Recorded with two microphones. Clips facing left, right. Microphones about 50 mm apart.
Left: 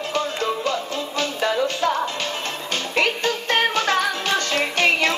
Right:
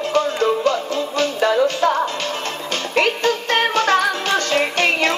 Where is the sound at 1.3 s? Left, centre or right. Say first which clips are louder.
Right 5 dB; right.